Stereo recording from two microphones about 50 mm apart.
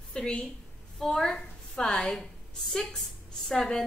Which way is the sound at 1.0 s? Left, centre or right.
Centre.